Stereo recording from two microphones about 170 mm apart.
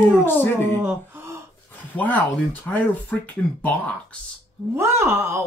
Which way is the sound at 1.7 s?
10° left (ahead or behind).